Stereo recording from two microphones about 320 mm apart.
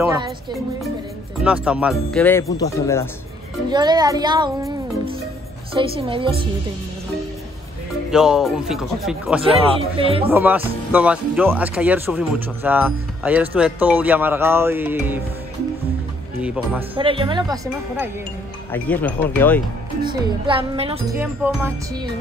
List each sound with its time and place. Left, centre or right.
0.0 s speech: centre
3.6 s speech: centre
8.1 s speech: centre
9.4 s speech: centre
10.3 s speech: centre
16.9 s speech: centre
18.7 s speech: centre
20.0 s speech: centre